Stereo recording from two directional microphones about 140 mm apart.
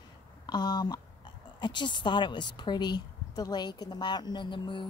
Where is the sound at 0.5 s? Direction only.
30° left (ahead or behind).